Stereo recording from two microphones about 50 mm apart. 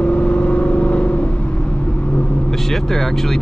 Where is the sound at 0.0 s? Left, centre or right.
Left.